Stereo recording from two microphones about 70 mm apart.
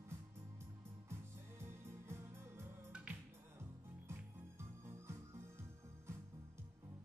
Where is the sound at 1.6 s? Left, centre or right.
Right.